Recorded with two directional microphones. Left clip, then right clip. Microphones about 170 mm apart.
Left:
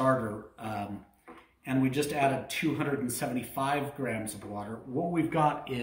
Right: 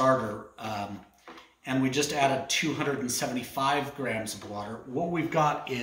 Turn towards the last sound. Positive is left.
turn(degrees=-5)  # may be behind; listen again after turning